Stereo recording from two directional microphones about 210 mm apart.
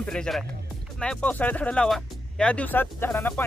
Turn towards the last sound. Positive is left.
turn(degrees=10)  # may be behind; listen again after turning